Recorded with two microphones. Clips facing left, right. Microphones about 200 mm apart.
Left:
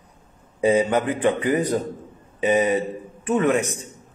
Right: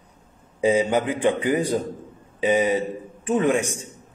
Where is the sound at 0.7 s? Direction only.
10° right (ahead or behind).